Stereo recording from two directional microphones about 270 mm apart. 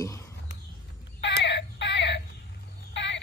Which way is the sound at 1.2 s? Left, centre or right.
Left.